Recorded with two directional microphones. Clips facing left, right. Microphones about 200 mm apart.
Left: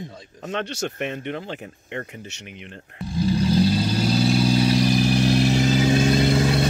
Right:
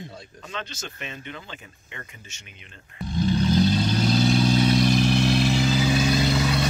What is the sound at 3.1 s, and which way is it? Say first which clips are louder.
Vehicle: left 1 dB; 5° left (ahead or behind).